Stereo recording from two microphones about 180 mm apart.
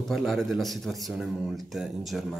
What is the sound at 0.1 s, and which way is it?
A man's voice, centre (ahead or behind).